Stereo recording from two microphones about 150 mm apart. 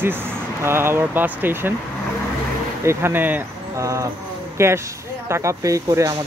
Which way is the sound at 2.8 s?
15° right (ahead or behind).